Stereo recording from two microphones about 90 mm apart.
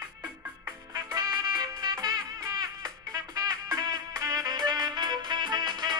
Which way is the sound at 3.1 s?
45° right (ahead or behind).